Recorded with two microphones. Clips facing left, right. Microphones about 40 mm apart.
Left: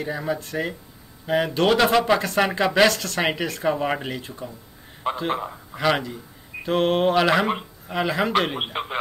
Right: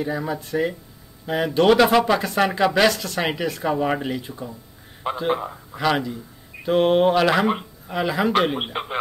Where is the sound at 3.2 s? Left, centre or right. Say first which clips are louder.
Even; centre.